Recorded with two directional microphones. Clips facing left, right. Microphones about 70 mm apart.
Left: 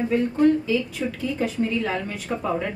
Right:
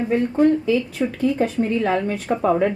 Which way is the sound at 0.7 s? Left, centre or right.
Right.